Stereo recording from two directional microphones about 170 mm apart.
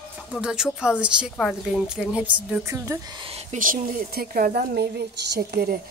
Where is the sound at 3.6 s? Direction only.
55° right (ahead or behind).